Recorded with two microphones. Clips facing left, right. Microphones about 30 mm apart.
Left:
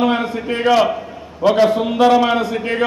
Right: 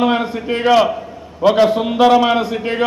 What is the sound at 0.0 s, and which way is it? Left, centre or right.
A man's voice, centre.